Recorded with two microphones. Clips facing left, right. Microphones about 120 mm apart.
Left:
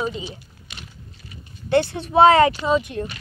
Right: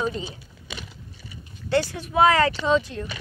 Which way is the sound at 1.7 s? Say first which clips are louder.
Left 4 dB; 25° left (ahead or behind).